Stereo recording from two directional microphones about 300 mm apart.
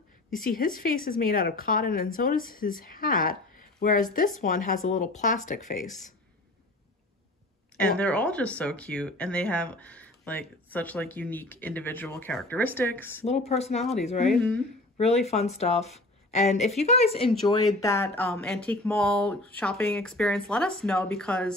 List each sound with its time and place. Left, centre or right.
0.4 s a woman's voice: left
7.8 s speech: centre
13.5 s a woman's voice: left
14.3 s speech: centre
15.0 s a woman's voice: left; by 21.5 s centre